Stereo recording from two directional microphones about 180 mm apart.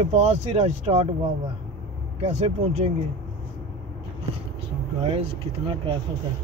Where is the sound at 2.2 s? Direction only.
35° right (ahead or behind).